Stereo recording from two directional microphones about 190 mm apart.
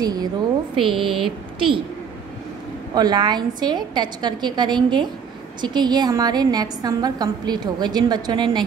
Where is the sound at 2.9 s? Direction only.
20° right (ahead or behind).